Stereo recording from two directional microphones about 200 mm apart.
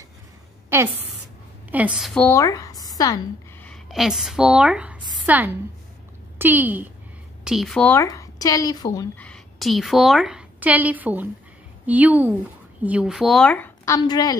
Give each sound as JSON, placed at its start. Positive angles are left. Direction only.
{"t": 1.7, "sound": "a woman's voice", "side_deg": -5}
{"t": 2.2, "sound": "speech", "side_deg": 15}
{"t": 3.6, "sound": "a woman's voice", "side_deg": 0}